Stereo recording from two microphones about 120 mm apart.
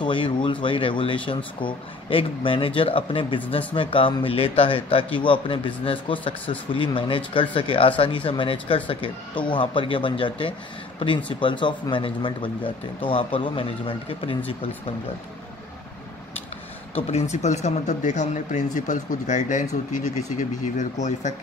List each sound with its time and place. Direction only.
0.0 s speech: 45° left (ahead or behind)
16.9 s speech: 65° left (ahead or behind); by 21.3 s 80° left